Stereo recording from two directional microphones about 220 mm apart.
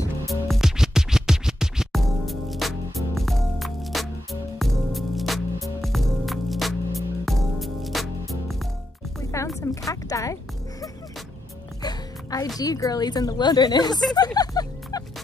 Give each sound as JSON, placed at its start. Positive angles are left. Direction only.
{"t": 0.3, "sound": "music", "side_deg": 0}
{"t": 9.6, "sound": "a sound", "side_deg": 15}
{"t": 11.8, "sound": "music", "side_deg": 15}
{"t": 12.5, "sound": "speech", "side_deg": 15}
{"t": 14.1, "sound": "music", "side_deg": 15}